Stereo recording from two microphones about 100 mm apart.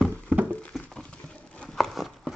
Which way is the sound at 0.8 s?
10° left (ahead or behind).